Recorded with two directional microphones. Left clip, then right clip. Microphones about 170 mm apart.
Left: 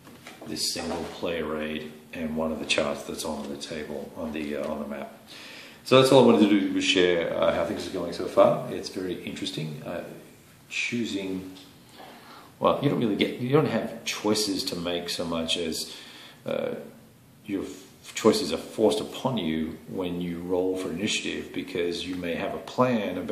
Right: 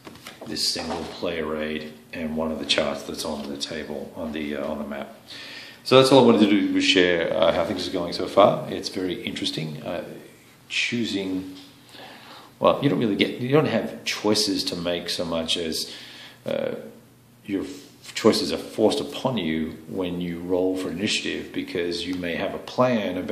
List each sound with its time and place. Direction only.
0.5 s speech: 25° right (ahead or behind); by 11.2 s 40° right (ahead or behind)
12.5 s speech: 25° right (ahead or behind)
18.1 s speech: 20° right (ahead or behind)